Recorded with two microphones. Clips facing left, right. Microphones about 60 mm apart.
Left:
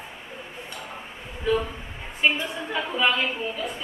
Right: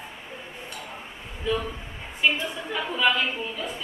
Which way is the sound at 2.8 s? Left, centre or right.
Left.